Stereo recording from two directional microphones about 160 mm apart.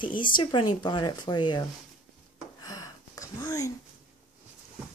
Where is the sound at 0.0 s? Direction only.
30° left (ahead or behind).